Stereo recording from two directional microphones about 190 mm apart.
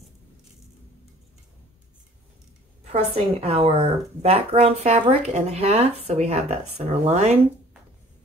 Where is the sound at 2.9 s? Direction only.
35° right (ahead or behind).